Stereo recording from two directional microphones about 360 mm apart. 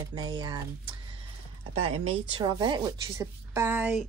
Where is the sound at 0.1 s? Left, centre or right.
Centre.